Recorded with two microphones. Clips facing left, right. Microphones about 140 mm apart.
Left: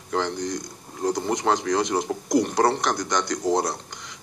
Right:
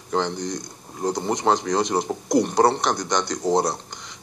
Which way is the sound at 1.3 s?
25° right (ahead or behind).